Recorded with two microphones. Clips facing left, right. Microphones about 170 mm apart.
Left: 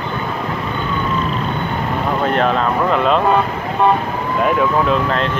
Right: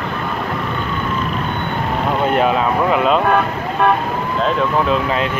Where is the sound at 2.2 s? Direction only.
5° right (ahead or behind).